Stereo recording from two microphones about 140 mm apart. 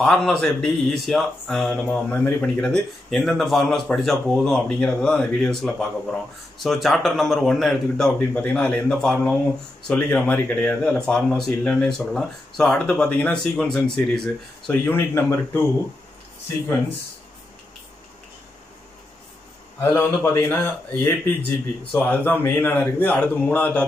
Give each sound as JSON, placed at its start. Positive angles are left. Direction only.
{"t": 0.0, "sound": "a man's voice", "side_deg": 5}
{"t": 14.9, "sound": "a man's voice", "side_deg": 15}
{"t": 19.8, "sound": "a man's voice", "side_deg": 15}